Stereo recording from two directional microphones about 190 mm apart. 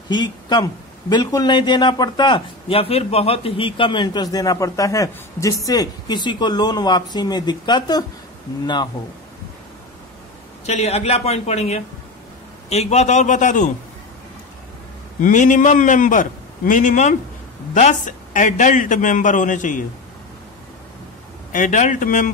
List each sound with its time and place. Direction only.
0.1 s a man's voice: 20° left (ahead or behind)
10.6 s a man's voice: 35° left (ahead or behind)
15.2 s a man's voice: 40° left (ahead or behind)
21.5 s a man's voice: 40° left (ahead or behind)